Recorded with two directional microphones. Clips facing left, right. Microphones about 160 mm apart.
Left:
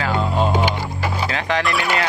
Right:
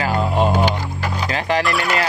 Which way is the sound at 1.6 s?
Centre (ahead or behind).